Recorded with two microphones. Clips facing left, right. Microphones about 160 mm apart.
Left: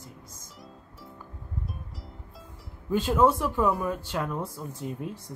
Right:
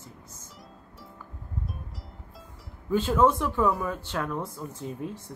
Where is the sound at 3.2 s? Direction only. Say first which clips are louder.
Even; 10° left (ahead or behind).